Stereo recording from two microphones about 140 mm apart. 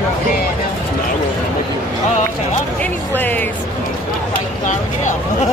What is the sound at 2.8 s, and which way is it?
Speech, 10° left (ahead or behind).